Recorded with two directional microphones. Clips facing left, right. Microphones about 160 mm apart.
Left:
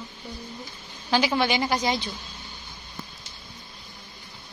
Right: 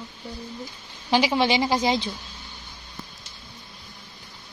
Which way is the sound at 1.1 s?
20° right (ahead or behind).